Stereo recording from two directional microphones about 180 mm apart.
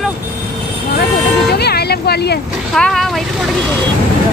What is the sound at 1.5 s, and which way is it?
Vehicle, 65° left (ahead or behind).